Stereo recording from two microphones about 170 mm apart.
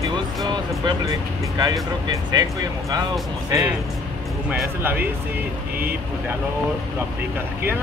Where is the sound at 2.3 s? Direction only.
25° right (ahead or behind).